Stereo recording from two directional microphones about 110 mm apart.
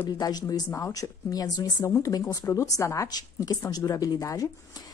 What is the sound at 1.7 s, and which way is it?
Speech, 25° left (ahead or behind).